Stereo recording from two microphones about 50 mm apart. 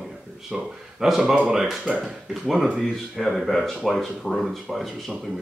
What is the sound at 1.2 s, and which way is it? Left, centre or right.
Speech, right.